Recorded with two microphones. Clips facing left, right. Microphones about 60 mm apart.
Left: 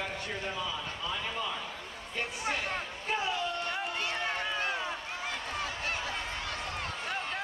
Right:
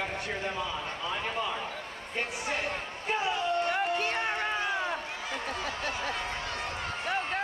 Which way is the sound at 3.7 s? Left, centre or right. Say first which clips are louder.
Right 5 dB; right.